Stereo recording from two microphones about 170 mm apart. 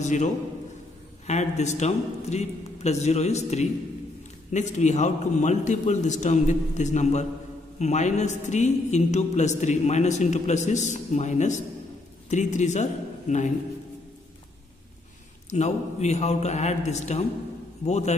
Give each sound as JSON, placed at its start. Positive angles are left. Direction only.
{"t": 0.0, "sound": "a man's voice", "side_deg": 45}
{"t": 15.5, "sound": "a man's voice", "side_deg": 40}